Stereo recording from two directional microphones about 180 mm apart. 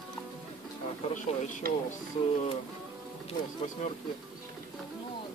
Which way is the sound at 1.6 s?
50° right (ahead or behind).